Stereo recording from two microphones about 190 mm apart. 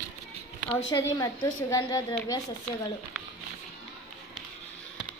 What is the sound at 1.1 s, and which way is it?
A woman's voice, 20° left (ahead or behind).